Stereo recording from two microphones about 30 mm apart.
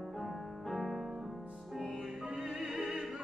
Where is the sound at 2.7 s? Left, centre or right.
Centre.